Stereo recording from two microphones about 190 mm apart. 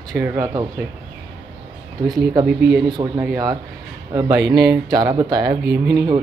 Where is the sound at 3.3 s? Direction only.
20° right (ahead or behind).